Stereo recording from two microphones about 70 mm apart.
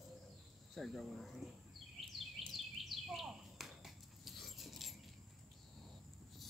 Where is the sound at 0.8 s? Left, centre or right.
Centre.